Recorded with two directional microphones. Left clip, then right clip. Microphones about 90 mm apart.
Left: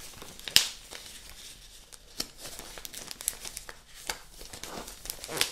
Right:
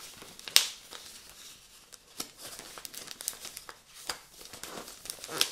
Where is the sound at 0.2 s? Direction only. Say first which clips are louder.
Left 1 dB; 45° right (ahead or behind).